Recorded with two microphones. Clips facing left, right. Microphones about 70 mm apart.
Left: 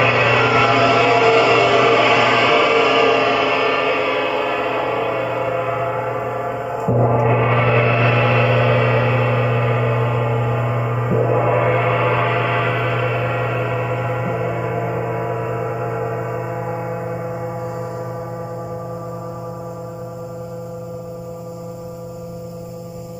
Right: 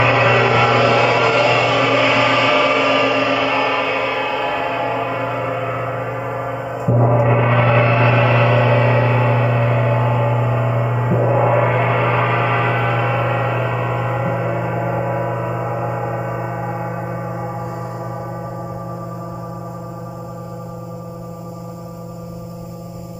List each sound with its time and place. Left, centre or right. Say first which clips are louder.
0.0 s vehicle: right 1 dB; centre
6.9 s gong: right 1 dB; centre; by 11.0 s right
11.0 s gong: right 1 dB; centre